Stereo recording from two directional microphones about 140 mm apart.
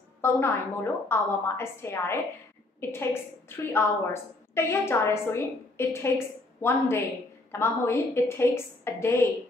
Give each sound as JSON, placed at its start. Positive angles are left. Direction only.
{"t": 0.2, "sound": "a woman's voice", "side_deg": 15}